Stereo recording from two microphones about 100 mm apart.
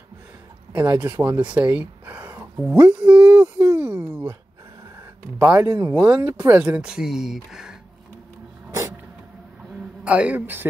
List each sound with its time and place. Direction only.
0.7 s speech: 40° right (ahead or behind)
1.0 s speech: 20° right (ahead or behind)
2.7 s speech: 15° right (ahead or behind)
5.4 s speech: 15° right (ahead or behind)
5.7 s speech: 30° right (ahead or behind)
6.2 s speech: 20° right (ahead or behind)
10.0 s speech: 15° right (ahead or behind)